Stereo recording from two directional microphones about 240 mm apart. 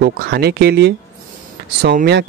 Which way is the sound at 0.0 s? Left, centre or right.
Right.